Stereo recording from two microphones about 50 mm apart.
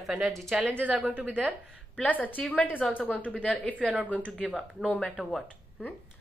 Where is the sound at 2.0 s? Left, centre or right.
Left.